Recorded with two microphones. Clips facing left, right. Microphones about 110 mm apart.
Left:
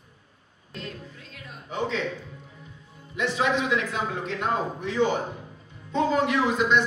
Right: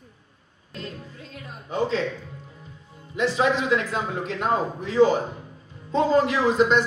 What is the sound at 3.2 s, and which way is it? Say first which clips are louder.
A man's voice: right 3 dB; 35° right (ahead or behind).